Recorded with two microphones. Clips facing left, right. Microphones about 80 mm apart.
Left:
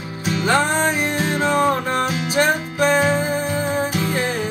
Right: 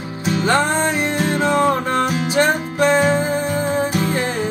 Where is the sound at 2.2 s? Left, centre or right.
Right.